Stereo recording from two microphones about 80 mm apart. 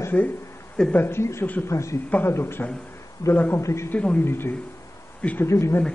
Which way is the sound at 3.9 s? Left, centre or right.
Centre.